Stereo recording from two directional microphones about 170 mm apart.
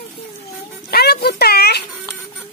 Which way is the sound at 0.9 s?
65° left (ahead or behind).